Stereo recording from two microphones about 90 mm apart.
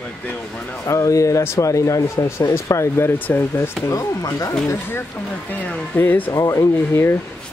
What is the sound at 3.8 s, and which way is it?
Speech, 40° left (ahead or behind).